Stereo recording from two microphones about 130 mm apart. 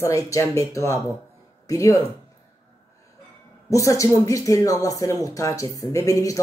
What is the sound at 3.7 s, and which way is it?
Speech, 25° left (ahead or behind).